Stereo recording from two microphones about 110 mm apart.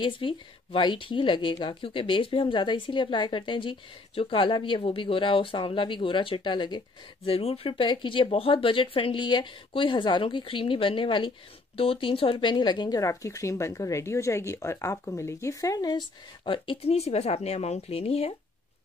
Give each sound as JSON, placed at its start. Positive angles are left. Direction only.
{"t": 0.0, "sound": "a woman's voice", "side_deg": 55}
{"t": 7.2, "sound": "a woman's voice", "side_deg": 60}
{"t": 13.0, "sound": "speech", "side_deg": 30}
{"t": 16.4, "sound": "a woman's voice", "side_deg": 50}
{"t": 16.9, "sound": "speech", "side_deg": 75}